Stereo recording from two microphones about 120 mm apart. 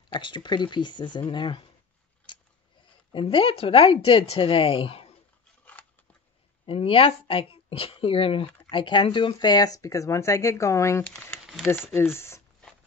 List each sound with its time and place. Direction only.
0.1 s speech: 40° left (ahead or behind)
3.1 s speech: 45° left (ahead or behind)
6.6 s speech: 50° left (ahead or behind); by 12.4 s 20° left (ahead or behind)